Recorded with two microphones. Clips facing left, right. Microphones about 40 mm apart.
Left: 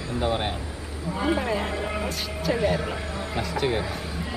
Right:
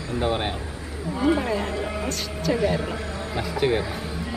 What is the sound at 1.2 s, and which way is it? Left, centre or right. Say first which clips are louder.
A woman's voice: right 3 dB; centre.